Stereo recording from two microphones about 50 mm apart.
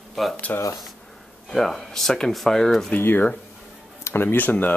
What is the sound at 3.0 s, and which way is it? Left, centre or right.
Speech, left.